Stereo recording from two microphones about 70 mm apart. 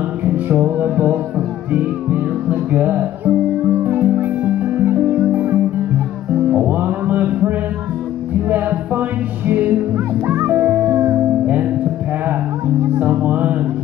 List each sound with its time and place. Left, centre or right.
0.2 s music: right
13.0 s music: right